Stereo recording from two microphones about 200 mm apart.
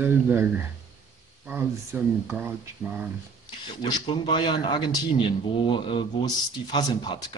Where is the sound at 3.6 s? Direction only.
20° left (ahead or behind).